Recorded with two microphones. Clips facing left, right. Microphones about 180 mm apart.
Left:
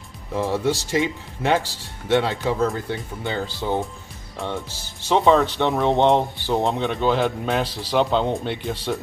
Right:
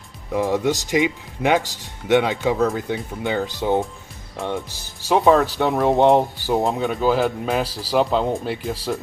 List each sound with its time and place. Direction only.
0.3 s speech: 15° right (ahead or behind)
2.5 s speech: centre (ahead or behind)
3.4 s speech: 15° right (ahead or behind)
5.1 s speech: 5° right (ahead or behind)